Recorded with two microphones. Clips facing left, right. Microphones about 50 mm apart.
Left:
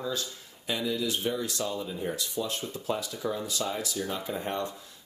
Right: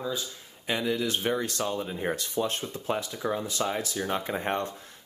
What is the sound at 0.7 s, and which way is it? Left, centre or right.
Speech, right.